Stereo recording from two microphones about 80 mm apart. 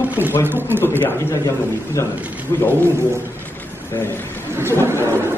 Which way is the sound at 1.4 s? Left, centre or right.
Left.